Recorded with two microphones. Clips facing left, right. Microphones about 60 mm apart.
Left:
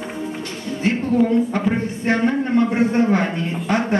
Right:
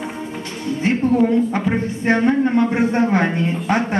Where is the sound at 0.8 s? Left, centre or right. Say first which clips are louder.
Right 2 dB; right.